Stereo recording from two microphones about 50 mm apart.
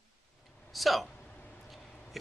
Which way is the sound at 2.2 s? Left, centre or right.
Centre.